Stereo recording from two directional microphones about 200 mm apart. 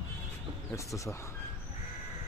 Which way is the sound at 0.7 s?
15° left (ahead or behind).